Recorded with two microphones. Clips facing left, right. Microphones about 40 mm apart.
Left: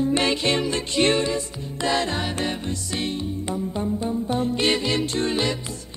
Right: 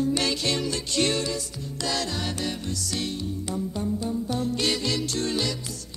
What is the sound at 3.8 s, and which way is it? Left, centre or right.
Music, left.